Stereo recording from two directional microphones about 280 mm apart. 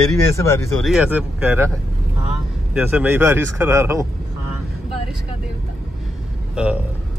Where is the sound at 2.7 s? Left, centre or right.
Centre.